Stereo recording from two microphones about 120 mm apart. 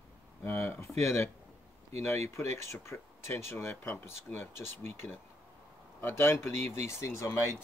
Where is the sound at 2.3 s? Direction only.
20° left (ahead or behind).